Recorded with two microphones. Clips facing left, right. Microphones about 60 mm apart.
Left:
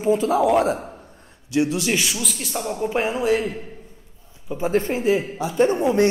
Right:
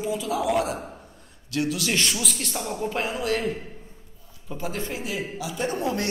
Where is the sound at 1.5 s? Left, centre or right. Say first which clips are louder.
Left 5 dB; left.